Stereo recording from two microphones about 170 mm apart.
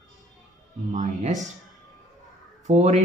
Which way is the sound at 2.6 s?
45° right (ahead or behind).